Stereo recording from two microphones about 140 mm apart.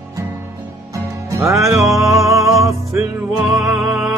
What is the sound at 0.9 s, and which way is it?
Music, 20° right (ahead or behind).